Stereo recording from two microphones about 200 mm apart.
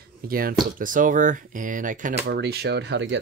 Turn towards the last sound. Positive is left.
turn(degrees=-60)  # may be behind; listen again after turning